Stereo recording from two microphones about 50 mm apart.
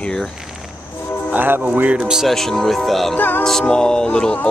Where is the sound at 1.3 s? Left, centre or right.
Right.